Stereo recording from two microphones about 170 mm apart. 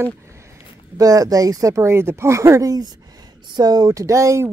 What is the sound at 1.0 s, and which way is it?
Speech, 20° right (ahead or behind).